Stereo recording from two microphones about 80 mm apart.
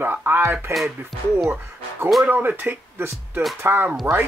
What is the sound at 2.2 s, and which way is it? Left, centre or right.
Speech, right.